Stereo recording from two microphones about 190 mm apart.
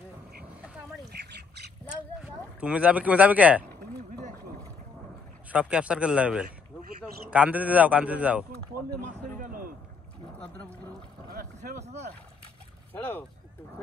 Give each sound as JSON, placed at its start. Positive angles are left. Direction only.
{"t": 1.9, "sound": "a sound", "side_deg": -5}
{"t": 5.5, "sound": "a man's voice", "side_deg": -5}
{"t": 9.0, "sound": "a sound", "side_deg": -45}
{"t": 11.2, "sound": "boat", "side_deg": -50}
{"t": 11.8, "sound": "boat", "side_deg": -35}
{"t": 12.9, "sound": "speech", "side_deg": 10}